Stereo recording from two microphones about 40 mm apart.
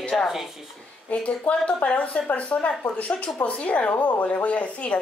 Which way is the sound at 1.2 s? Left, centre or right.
Left.